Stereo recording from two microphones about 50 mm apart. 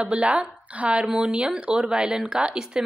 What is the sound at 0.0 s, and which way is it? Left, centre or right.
Speech, right.